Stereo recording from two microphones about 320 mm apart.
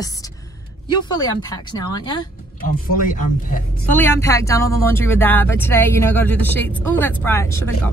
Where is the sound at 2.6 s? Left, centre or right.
Left.